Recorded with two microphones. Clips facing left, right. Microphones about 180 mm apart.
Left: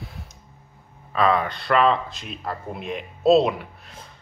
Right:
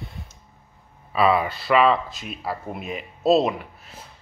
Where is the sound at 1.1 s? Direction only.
5° right (ahead or behind).